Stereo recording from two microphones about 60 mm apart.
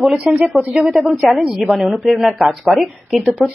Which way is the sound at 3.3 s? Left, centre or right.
Centre.